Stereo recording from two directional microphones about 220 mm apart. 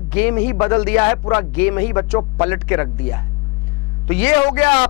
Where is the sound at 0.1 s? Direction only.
10° left (ahead or behind).